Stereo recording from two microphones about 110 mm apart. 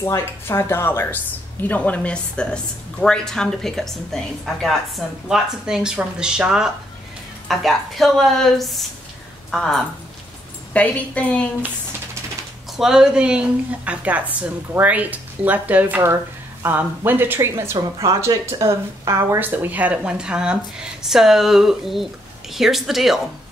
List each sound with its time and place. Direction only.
0.0 s a woman's voice: 20° left (ahead or behind)
12.7 s a woman's voice: 5° right (ahead or behind); by 19.4 s 30° right (ahead or behind)
19.4 s a woman's voice: 15° right (ahead or behind); by 23.2 s centre (ahead or behind)